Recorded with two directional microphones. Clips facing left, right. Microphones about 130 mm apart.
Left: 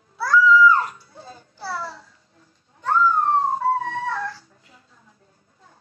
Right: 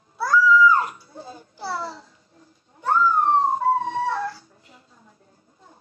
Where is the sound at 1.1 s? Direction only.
20° right (ahead or behind).